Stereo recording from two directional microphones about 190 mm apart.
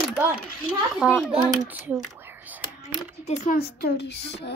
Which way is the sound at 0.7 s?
5° right (ahead or behind).